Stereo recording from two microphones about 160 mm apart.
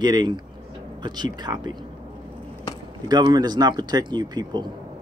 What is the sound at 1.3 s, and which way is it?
Speech, 25° right (ahead or behind).